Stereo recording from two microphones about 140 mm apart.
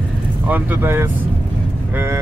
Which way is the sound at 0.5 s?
15° right (ahead or behind).